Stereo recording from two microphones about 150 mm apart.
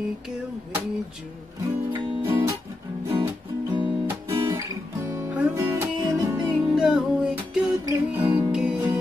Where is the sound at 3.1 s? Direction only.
15° right (ahead or behind).